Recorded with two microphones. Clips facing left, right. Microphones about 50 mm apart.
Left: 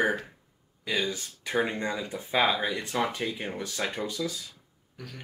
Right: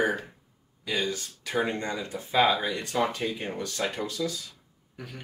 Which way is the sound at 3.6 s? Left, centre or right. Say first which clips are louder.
Right 1 dB; centre.